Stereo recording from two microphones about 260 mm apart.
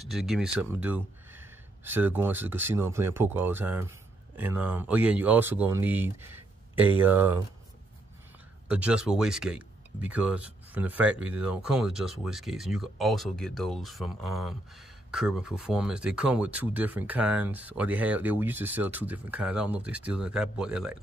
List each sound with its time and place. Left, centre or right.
0.1 s speech: centre
8.6 s speech: centre